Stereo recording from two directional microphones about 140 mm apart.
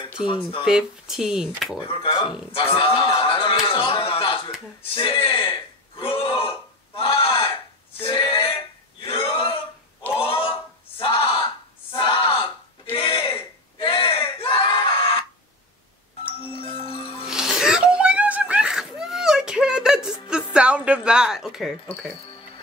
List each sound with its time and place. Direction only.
0.3 s speech: 40° left (ahead or behind)
0.7 s speech: 5° right (ahead or behind)
1.8 s speech: 35° left (ahead or behind)
3.2 s a sound: 40° left (ahead or behind)
4.9 s throat clearing: 40° left (ahead or behind)
8.0 s male singing: 40° left (ahead or behind)
9.0 s a sound: 40° left (ahead or behind)
16.5 s music: 40° left (ahead or behind)
17.3 s whimper: 5° right (ahead or behind)
20.5 s speech: 10° right (ahead or behind)